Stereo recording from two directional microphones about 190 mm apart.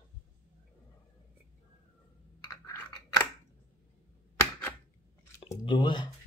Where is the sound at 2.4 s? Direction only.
15° left (ahead or behind).